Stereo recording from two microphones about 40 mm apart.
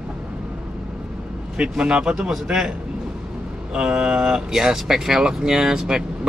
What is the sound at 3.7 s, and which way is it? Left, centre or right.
Speech, right.